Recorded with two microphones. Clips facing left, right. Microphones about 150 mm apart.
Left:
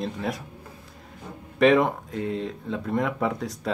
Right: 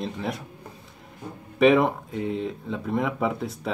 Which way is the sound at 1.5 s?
Centre (ahead or behind).